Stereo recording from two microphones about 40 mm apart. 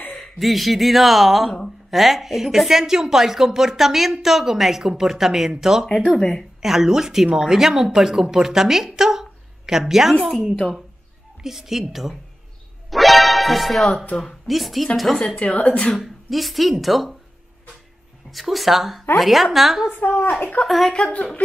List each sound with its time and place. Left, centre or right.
0.2 s a woman's voice: centre
6.1 s a woman's voice: centre
6.6 s a woman's voice: centre
12.9 s music: centre
14.1 s speech: centre
15.1 s a woman's voice: left
16.0 s speech: centre
18.3 s speech: centre
19.9 s a child's voice: left
20.6 s speech: centre
20.9 s a woman's voice: left